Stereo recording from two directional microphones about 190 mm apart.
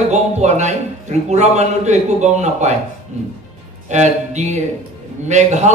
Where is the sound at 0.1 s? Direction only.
35° right (ahead or behind).